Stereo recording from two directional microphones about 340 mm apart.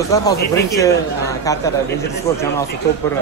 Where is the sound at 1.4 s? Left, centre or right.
Centre.